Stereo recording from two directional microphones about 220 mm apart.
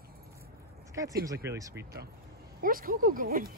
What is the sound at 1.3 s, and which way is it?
Speech, 15° right (ahead or behind).